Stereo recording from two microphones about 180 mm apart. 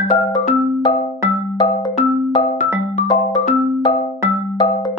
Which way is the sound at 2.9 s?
40° left (ahead or behind).